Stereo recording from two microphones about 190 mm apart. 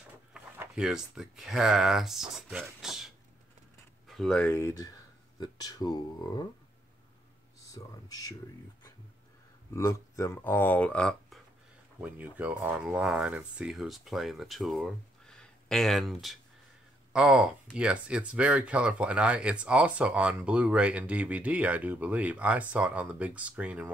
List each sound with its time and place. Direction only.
0.3 s speech: 5° right (ahead or behind)
4.1 s speech: 5° left (ahead or behind); by 6.4 s 20° left (ahead or behind)
7.6 s speech: 20° left (ahead or behind)
9.8 s speech: 15° left (ahead or behind); by 23.9 s 5° right (ahead or behind)